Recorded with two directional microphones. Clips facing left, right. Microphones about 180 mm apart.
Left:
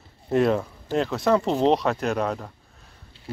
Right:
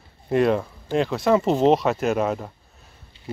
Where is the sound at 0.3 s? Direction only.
Centre (ahead or behind).